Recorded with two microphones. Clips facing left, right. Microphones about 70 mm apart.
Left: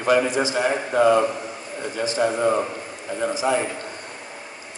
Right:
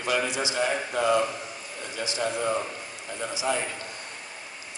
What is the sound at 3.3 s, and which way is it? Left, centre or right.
Speech, left.